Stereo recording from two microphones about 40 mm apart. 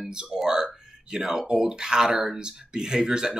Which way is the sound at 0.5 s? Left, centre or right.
Centre.